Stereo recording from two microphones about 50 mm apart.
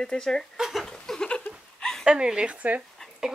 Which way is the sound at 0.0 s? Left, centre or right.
Centre.